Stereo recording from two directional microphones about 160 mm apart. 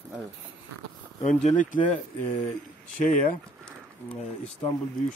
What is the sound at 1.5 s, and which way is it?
Speech, 55° left (ahead or behind).